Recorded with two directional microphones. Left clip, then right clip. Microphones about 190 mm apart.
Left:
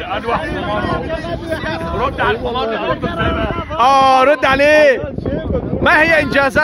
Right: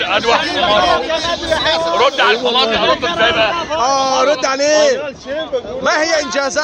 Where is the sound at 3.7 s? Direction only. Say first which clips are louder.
Left 6 dB; 30° left (ahead or behind).